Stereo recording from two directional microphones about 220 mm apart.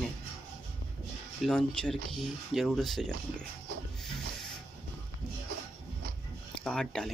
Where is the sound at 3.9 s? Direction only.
Centre (ahead or behind).